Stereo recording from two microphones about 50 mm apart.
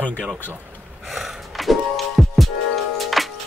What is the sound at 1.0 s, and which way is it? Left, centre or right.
Music, centre.